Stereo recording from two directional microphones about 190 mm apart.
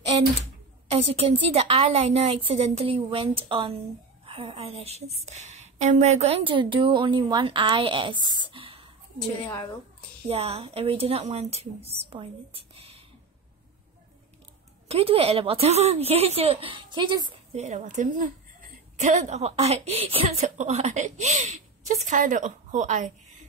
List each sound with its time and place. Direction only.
0.1 s a sound: 25° right (ahead or behind)
0.8 s a woman's voice: 30° right (ahead or behind)
10.2 s a woman's voice: 30° right (ahead or behind)
14.9 s a woman's voice: 30° right (ahead or behind)
17.6 s a woman's voice: 40° right (ahead or behind)